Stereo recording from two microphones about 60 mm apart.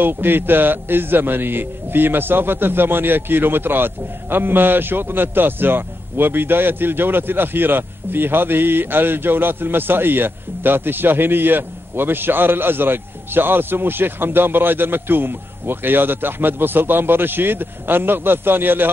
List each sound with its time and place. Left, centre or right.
0.0 s speech: right